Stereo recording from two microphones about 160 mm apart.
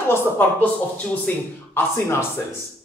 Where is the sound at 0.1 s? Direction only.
10° left (ahead or behind).